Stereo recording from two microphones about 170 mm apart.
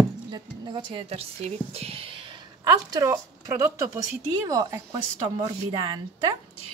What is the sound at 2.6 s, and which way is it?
A woman's voice, 20° right (ahead or behind).